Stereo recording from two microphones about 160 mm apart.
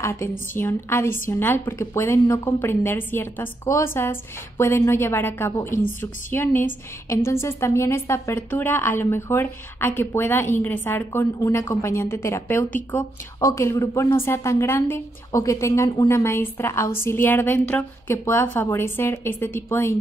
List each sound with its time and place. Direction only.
0.0 s a woman's voice: 15° left (ahead or behind)